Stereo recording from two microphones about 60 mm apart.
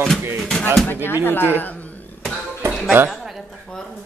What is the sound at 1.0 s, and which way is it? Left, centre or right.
Speech, left.